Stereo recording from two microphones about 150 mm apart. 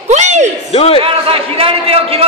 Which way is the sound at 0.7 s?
40° left (ahead or behind).